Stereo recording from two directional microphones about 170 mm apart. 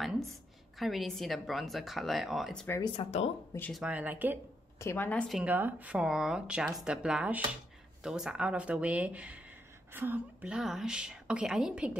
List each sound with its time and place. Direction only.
0.3 s a woman's voice: centre (ahead or behind)
2.8 s speech: 35° left (ahead or behind)
3.5 s a woman's voice: 10° left (ahead or behind)
3.8 s speech: 10° right (ahead or behind)
4.7 s a woman's voice: 15° left (ahead or behind)
5.3 s a woman's voice: 10° right (ahead or behind)